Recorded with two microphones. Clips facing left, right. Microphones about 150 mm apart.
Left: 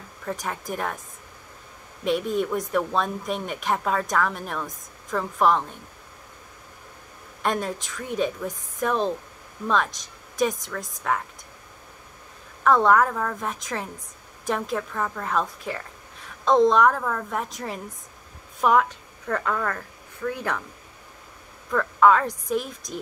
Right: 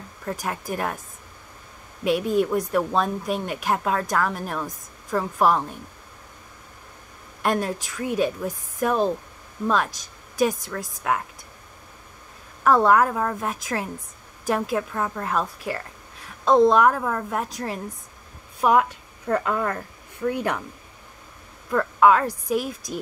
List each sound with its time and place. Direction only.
0.4 s a woman's voice: 5° right (ahead or behind)
2.0 s a woman's voice: 5° right (ahead or behind)
7.6 s a woman's voice: 5° right (ahead or behind)
12.6 s a woman's voice: 10° right (ahead or behind)
18.6 s a woman's voice: 15° right (ahead or behind)
21.7 s a woman's voice: 10° right (ahead or behind)